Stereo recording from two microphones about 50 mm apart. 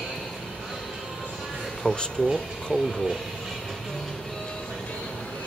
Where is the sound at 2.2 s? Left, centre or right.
Centre.